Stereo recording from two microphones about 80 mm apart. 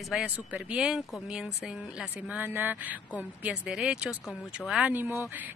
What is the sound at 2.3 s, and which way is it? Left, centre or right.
Speech, right.